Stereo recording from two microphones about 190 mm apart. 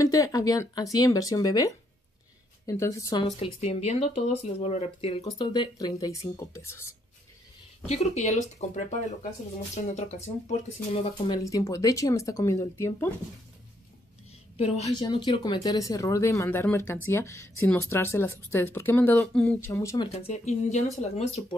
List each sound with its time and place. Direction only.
0.0 s speech: 20° left (ahead or behind)
3.3 s speech: 35° left (ahead or behind); by 7.0 s 15° left (ahead or behind)
7.8 s speech: 35° left (ahead or behind)
11.1 s speech: 20° left (ahead or behind)
14.6 s speech: 35° left (ahead or behind)
15.0 s speech: 20° left (ahead or behind)
20.1 s speech: 35° left (ahead or behind)